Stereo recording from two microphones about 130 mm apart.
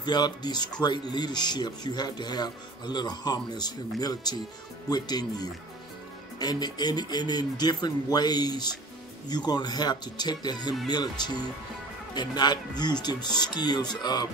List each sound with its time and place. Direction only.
0.0 s speech: 30° left (ahead or behind)